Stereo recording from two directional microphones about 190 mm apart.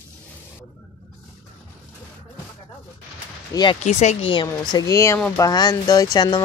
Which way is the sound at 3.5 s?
20° left (ahead or behind).